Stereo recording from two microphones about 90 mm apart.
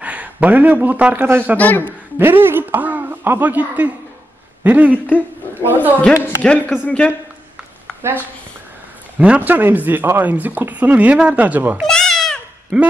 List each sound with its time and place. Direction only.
0.0 s a man's voice: 15° right (ahead or behind)
1.6 s a man's voice: 20° left (ahead or behind)
1.9 s speech: 25° right (ahead or behind)
4.9 s speech: 20° left (ahead or behind)
5.5 s a woman's voice: 20° right (ahead or behind)
6.4 s speech: 15° left (ahead or behind)
8.0 s speech: 20° right (ahead or behind)
11.8 s goat: 5° left (ahead or behind)
12.7 s speech: 15° right (ahead or behind)